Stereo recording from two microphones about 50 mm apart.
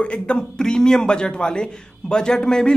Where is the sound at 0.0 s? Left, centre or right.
Left.